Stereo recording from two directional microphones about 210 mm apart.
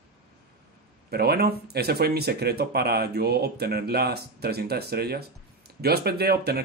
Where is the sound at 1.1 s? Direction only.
50° right (ahead or behind).